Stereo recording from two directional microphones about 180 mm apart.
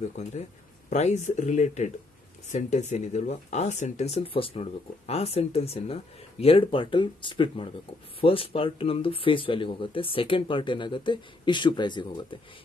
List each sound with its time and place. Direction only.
0.1 s speech: 40° left (ahead or behind); by 12.4 s 25° left (ahead or behind)